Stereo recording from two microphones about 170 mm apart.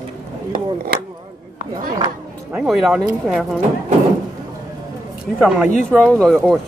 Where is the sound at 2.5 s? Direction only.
Centre (ahead or behind).